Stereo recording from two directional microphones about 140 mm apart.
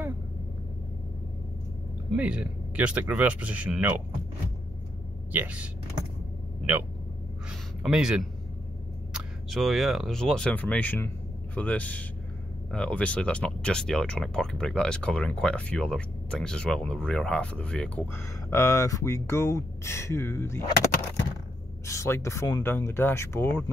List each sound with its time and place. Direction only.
2.1 s speech: 10° right (ahead or behind)
5.3 s speech: 10° right (ahead or behind)
7.8 s speech: 5° right (ahead or behind); by 20.6 s 20° left (ahead or behind)
21.8 s speech: 20° left (ahead or behind)